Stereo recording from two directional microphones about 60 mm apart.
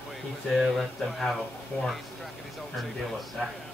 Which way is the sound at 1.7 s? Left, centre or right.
Left.